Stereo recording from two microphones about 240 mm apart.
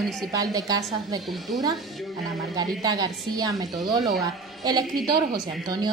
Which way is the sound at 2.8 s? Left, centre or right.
Centre.